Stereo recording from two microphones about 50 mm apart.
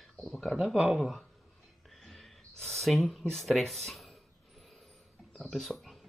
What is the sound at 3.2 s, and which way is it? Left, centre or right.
Speech, centre.